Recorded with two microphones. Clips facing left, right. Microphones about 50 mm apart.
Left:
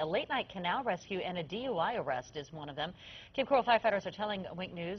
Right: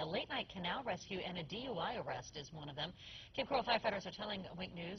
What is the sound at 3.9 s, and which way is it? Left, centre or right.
Speech, left.